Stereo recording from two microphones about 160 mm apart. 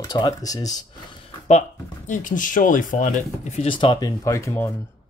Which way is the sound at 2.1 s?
55° left (ahead or behind).